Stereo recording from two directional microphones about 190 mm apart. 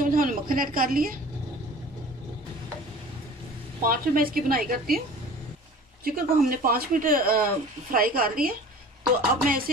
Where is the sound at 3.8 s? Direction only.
50° right (ahead or behind).